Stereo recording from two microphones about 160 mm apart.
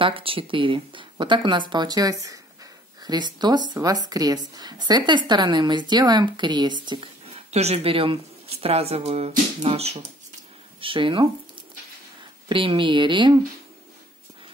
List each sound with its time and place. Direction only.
0.0 s a woman's voice: 35° right (ahead or behind)
12.4 s a woman's voice: 30° right (ahead or behind)